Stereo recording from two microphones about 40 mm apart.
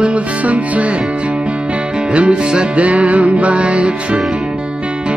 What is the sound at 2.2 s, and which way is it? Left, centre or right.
Music, right.